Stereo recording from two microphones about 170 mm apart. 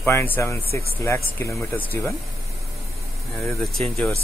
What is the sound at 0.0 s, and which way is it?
Speech, 15° left (ahead or behind).